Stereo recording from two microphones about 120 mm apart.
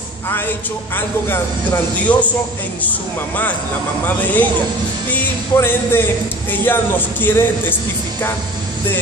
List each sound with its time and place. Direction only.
0.9 s speech: 15° left (ahead or behind)
4.0 s speech: 15° left (ahead or behind)